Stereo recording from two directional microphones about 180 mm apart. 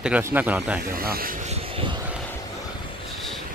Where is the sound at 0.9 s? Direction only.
55° right (ahead or behind); by 2.0 s 35° right (ahead or behind).